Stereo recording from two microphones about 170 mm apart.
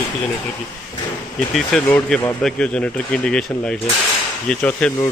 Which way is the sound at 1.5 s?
5° left (ahead or behind).